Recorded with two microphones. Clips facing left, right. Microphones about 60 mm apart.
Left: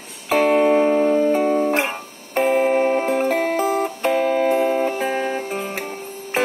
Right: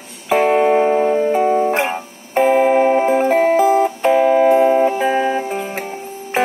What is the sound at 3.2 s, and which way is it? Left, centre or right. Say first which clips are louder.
Music: right 6 dB; right.